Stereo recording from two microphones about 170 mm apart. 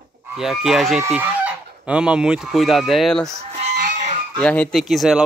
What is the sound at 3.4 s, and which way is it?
Fowl, 40° right (ahead or behind).